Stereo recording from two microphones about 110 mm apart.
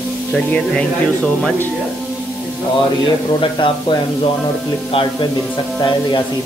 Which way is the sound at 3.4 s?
50° left (ahead or behind).